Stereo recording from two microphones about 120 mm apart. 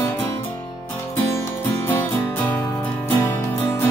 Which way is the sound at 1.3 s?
20° left (ahead or behind).